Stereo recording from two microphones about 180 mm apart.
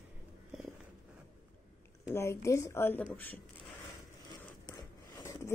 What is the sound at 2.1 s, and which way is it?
A woman's voice, 15° left (ahead or behind).